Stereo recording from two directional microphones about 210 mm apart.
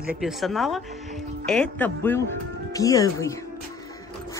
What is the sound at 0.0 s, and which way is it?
Speech, 5° right (ahead or behind).